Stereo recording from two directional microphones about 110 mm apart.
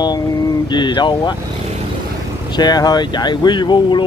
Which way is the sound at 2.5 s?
40° left (ahead or behind).